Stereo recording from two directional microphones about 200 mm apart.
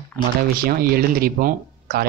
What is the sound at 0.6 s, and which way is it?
Speech, 45° right (ahead or behind).